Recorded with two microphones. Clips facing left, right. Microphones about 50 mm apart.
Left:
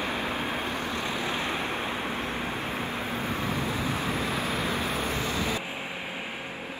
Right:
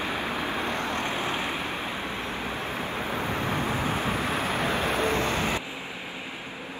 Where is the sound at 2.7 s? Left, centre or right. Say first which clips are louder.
Right 1 dB; right.